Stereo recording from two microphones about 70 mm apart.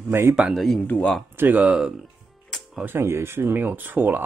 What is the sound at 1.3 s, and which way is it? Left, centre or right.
Speech, right.